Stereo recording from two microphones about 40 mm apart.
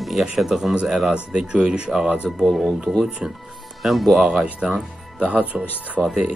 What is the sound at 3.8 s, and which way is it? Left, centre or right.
Speech, centre.